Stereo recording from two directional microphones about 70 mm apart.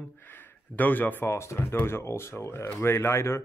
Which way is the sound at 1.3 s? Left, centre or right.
Left.